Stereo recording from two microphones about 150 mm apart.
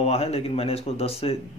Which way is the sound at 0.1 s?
40° left (ahead or behind).